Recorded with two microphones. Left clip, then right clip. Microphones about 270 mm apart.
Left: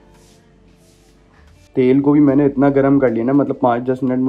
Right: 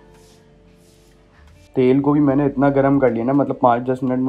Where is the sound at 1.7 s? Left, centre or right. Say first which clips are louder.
Left 3 dB; centre.